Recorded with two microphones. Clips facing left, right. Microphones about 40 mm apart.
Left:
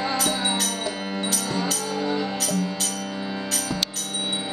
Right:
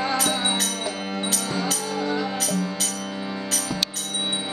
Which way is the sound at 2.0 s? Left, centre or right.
Centre.